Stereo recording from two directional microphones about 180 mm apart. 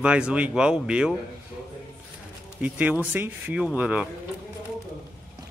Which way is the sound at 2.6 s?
10° right (ahead or behind).